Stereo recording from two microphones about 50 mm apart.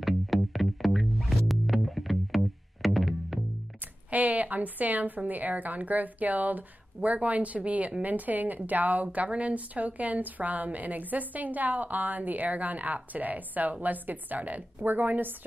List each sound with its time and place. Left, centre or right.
0.0 s music: centre
4.1 s a woman's voice: right